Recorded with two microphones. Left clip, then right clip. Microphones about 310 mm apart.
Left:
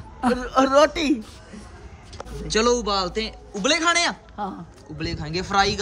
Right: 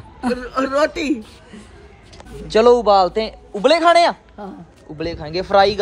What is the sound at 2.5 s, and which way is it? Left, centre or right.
A man's voice, centre.